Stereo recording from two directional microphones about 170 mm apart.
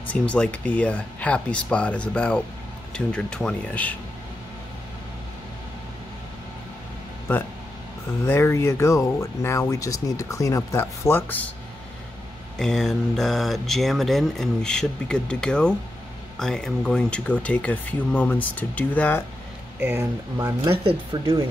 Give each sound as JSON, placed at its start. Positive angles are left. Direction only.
{"t": 0.1, "sound": "speech", "side_deg": 5}
{"t": 8.3, "sound": "speech", "side_deg": 15}
{"t": 12.5, "sound": "speech", "side_deg": 5}
{"t": 19.8, "sound": "speech", "side_deg": -15}
{"t": 20.8, "sound": "speech", "side_deg": -30}